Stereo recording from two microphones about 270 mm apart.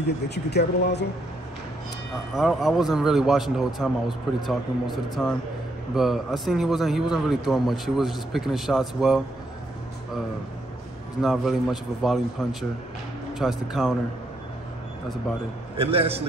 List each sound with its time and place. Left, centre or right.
0.0 s speech: left
2.3 s a man's voice: centre
11.1 s a man's voice: centre
15.7 s a man's voice: right